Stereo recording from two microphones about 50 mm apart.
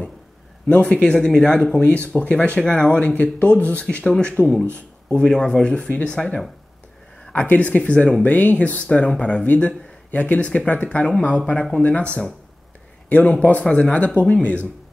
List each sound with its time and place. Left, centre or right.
0.7 s speech: left
4.0 s speech: centre
7.4 s speech: left